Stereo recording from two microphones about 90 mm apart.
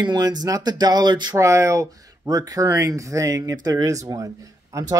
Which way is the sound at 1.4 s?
35° right (ahead or behind).